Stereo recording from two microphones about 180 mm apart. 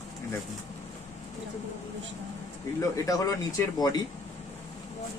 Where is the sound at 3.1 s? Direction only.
20° left (ahead or behind).